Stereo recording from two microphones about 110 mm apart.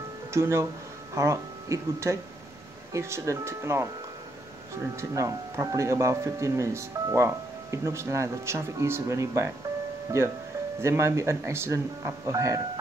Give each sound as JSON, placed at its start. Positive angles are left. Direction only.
{"t": 0.3, "sound": "speech", "side_deg": -25}
{"t": 4.9, "sound": "speech", "side_deg": -30}